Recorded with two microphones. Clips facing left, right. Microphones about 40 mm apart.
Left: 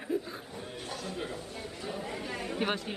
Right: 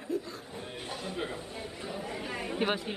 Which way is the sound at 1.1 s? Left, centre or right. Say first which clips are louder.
Right 3 dB; centre.